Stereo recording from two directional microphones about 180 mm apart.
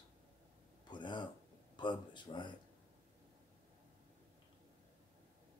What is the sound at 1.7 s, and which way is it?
Speech, 25° left (ahead or behind).